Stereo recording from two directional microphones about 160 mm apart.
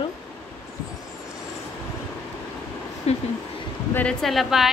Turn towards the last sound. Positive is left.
turn(degrees=0)  # may be behind; listen again after turning